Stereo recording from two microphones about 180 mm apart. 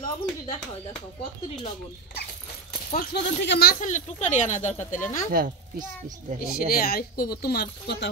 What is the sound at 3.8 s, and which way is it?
Speech, 40° left (ahead or behind).